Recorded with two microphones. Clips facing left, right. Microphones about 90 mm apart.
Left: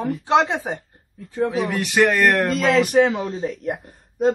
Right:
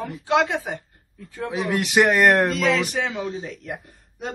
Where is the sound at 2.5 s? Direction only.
45° left (ahead or behind).